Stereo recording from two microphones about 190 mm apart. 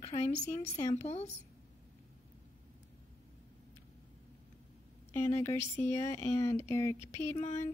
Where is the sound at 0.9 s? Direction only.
35° left (ahead or behind).